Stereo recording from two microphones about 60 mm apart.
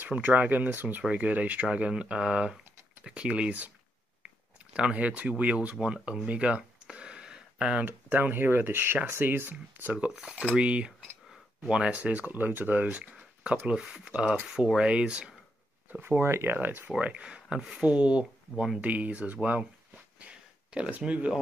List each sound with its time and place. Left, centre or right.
0.1 s speech: right
4.7 s speech: right
10.1 s speech: centre; by 13.0 s right
13.0 s a sound: centre
13.7 s speech: centre
16.0 s speech: right
16.5 s speech: right
17.0 s speech: centre
20.2 s a sound: centre
21.0 s speech: right